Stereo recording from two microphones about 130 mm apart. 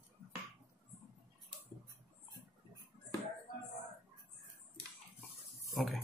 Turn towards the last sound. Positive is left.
turn(degrees=0)  # may be behind; listen again after turning